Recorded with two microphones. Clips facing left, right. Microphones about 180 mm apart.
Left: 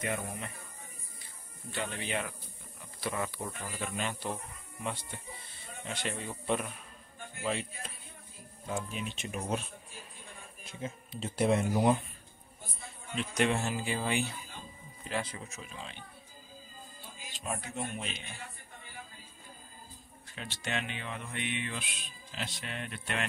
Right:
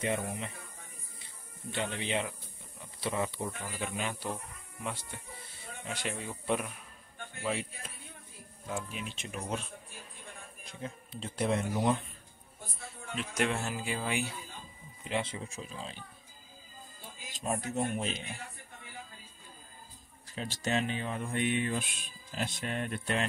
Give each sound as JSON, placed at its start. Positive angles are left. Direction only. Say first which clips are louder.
{"t": 0.0, "sound": "speech", "louder": "right 3 dB", "side_deg": -25}
{"t": 3.3, "sound": "speech", "louder": "right 2 dB", "side_deg": 0}
{"t": 5.9, "sound": "speech", "louder": "even", "side_deg": -5}
{"t": 10.6, "sound": "speech", "louder": "left 2 dB", "side_deg": 5}
{"t": 13.1, "sound": "speech", "louder": "left 2 dB", "side_deg": -5}
{"t": 15.0, "sound": "a man's voice", "louder": "right 2 dB", "side_deg": -20}
{"t": 17.3, "sound": "a man's voice", "louder": "right 5 dB", "side_deg": -40}
{"t": 20.3, "sound": "speech", "louder": "right 5 dB", "side_deg": -40}